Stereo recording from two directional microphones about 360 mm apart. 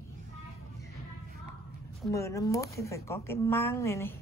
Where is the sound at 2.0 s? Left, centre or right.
Centre.